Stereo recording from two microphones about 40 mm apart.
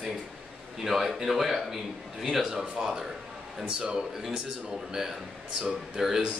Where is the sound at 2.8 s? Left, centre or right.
Centre.